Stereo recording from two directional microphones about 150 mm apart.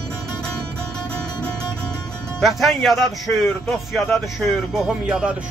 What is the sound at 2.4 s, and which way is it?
Speech, centre (ahead or behind).